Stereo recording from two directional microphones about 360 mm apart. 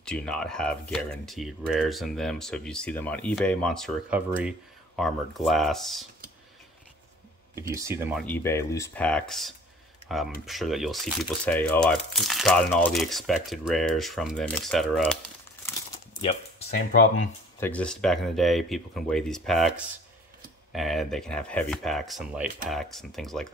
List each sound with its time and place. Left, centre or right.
0.0 s speech: centre
7.7 s speech: centre
16.2 s a sound: centre
17.6 s speech: centre
20.7 s speech: centre